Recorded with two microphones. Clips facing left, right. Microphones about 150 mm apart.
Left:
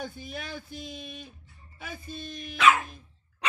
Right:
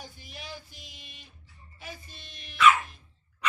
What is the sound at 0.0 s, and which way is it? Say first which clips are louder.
Speech: left 8 dB; 55° left (ahead or behind).